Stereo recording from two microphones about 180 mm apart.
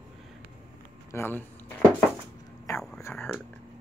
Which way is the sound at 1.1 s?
10° left (ahead or behind).